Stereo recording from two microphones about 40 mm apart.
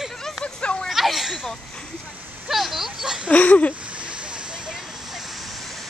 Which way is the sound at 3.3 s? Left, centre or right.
Left.